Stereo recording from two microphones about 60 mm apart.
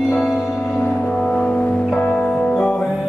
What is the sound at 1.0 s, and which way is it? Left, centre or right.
Music, left.